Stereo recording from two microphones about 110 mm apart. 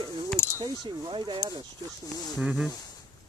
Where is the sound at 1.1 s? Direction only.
45° right (ahead or behind).